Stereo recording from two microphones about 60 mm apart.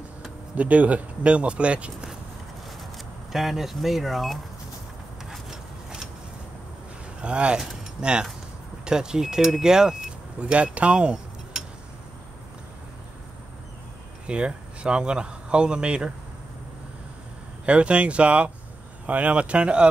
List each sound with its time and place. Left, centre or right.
0.6 s speech: right
3.3 s speech: centre
5.3 s a sound: centre
7.2 s speech: centre
10.4 s speech: right
14.2 s speech: centre
17.6 s speech: centre